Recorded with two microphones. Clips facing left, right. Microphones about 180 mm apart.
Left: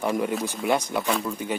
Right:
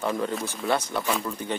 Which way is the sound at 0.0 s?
15° left (ahead or behind).